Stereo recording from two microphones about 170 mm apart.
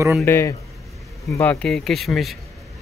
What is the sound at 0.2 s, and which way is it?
Speech, 15° left (ahead or behind).